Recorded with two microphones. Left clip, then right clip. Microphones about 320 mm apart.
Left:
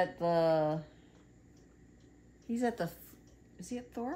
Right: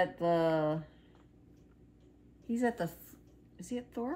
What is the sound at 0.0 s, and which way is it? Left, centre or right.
Speech, centre.